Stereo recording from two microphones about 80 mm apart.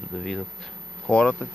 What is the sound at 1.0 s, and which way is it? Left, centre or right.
Speech, centre.